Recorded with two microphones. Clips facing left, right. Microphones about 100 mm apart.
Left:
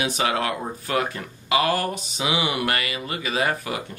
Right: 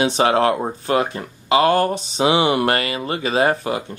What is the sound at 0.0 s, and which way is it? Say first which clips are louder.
Speech: right 8 dB; 35° right (ahead or behind).